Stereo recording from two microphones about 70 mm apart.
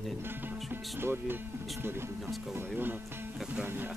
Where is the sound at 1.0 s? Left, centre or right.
Right.